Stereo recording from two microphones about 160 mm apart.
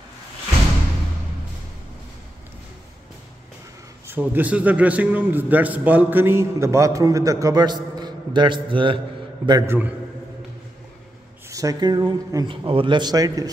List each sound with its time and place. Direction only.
4.1 s a man's voice: 10° right (ahead or behind)
11.4 s speech: 20° right (ahead or behind)